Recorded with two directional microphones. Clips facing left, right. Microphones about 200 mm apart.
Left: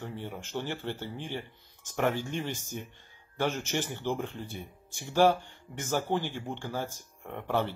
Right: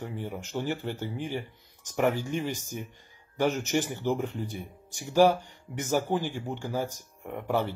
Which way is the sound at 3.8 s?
10° right (ahead or behind).